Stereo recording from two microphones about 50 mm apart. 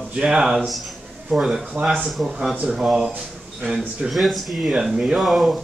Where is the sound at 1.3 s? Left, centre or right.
Centre.